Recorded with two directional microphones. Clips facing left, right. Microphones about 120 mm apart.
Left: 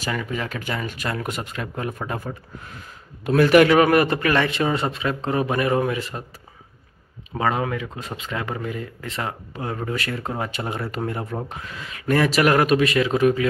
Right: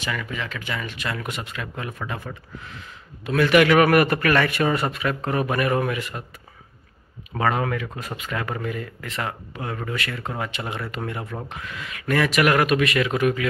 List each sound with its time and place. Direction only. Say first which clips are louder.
0.0 s speech: left 3 dB; 40° left (ahead or behind)
3.7 s speech: even; 25° left (ahead or behind)
7.3 s speech: even; 20° left (ahead or behind)